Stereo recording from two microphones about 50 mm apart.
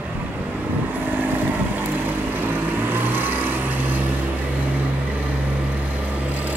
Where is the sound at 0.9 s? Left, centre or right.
Right.